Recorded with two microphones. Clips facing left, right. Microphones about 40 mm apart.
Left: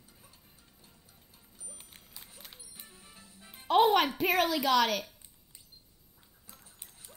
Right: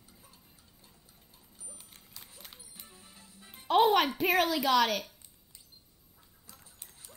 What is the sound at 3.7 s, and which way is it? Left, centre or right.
Music, centre.